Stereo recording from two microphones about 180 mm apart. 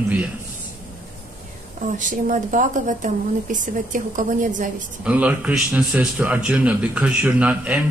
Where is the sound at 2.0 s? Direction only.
45° right (ahead or behind).